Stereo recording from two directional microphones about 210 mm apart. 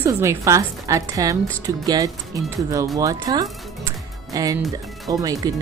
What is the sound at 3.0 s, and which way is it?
A woman's voice, 15° right (ahead or behind).